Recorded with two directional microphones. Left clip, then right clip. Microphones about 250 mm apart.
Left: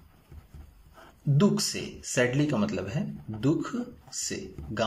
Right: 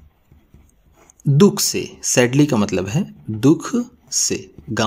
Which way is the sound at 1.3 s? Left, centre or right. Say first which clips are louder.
Right 11 dB; right.